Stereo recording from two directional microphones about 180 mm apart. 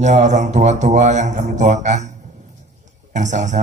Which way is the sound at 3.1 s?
40° right (ahead or behind).